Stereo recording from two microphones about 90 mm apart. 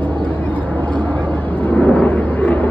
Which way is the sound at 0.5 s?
20° left (ahead or behind).